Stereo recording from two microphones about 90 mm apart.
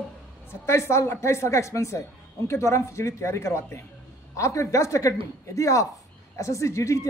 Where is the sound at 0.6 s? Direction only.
30° left (ahead or behind).